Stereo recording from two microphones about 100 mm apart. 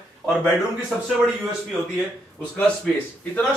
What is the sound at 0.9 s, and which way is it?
Speech, 10° right (ahead or behind).